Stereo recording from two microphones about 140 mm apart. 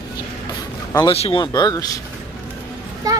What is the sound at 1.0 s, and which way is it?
Speech, 40° left (ahead or behind).